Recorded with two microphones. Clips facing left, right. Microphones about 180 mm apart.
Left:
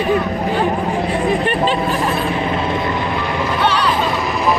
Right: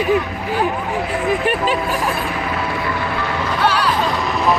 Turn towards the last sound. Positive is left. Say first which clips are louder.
# left 1 dB
turn(degrees=5)  # may be behind; listen again after turning